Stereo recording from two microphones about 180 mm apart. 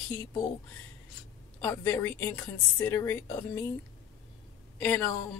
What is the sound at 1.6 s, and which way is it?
A woman's voice, 15° left (ahead or behind).